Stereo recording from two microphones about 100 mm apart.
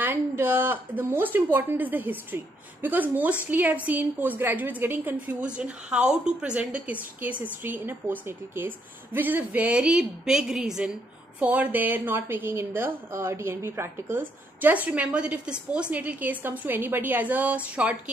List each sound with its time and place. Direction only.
0.0 s a woman's voice: 25° right (ahead or behind)